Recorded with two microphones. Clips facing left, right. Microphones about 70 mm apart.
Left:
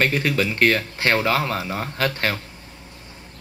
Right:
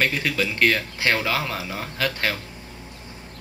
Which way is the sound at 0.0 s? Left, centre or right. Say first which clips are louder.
Left 3 dB; left.